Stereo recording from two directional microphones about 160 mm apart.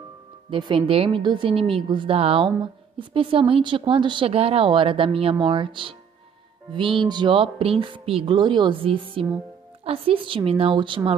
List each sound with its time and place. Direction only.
0.5 s a woman's voice: 35° right (ahead or behind)